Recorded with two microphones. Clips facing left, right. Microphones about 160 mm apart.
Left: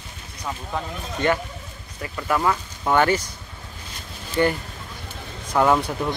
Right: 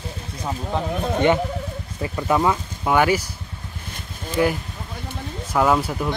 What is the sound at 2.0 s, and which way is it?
Speech, 20° right (ahead or behind).